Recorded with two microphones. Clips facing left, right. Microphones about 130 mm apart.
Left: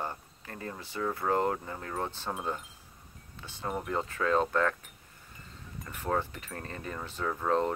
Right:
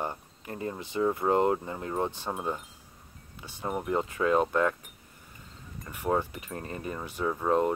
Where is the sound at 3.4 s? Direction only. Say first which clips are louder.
Right 2 dB; 15° right (ahead or behind).